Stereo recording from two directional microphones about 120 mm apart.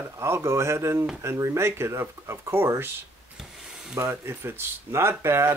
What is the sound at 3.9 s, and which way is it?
Speech, 20° right (ahead or behind).